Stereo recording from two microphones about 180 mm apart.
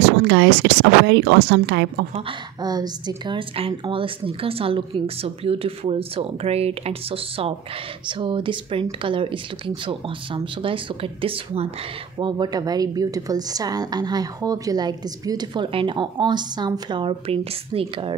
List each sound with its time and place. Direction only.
0.0 s speech: 75° right (ahead or behind)
2.1 s a woman's voice: 25° right (ahead or behind)